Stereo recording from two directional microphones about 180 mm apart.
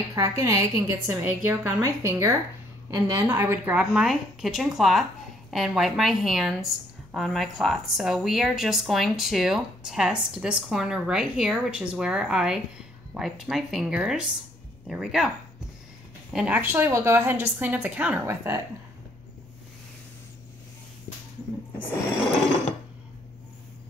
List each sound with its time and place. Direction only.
0.1 s a woman's voice: 15° right (ahead or behind)
16.3 s a woman's voice: 5° right (ahead or behind)